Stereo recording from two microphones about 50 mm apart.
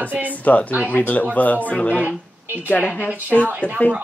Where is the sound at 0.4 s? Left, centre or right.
Left.